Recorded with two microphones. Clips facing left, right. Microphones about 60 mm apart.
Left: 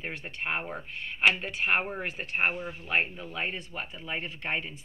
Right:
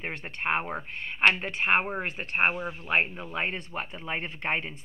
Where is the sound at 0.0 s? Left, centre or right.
Right.